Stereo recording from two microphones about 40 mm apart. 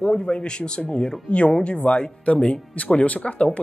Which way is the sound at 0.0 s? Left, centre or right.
Left.